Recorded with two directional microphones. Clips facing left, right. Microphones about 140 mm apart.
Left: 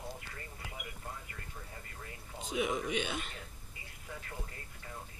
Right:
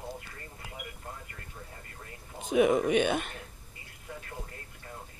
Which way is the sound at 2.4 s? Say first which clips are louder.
Right 10 dB; 55° right (ahead or behind).